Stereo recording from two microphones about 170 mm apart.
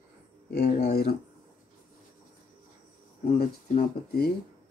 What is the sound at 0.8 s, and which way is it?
Speech, 65° left (ahead or behind).